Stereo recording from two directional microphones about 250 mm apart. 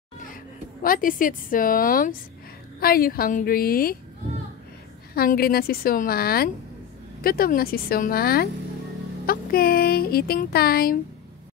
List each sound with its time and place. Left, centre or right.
0.8 s speech: left
5.1 s speech: left